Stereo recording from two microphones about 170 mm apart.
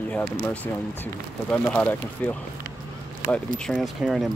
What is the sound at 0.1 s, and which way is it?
Speech, 10° left (ahead or behind).